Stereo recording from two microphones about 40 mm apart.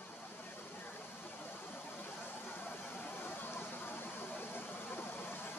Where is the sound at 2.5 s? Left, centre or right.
Left.